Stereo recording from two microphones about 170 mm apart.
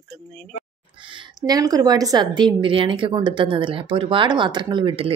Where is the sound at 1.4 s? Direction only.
20° right (ahead or behind).